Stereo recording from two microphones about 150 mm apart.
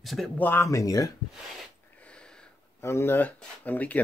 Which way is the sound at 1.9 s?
5° left (ahead or behind).